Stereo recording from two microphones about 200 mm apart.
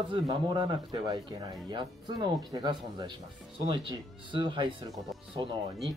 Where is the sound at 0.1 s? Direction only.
25° right (ahead or behind).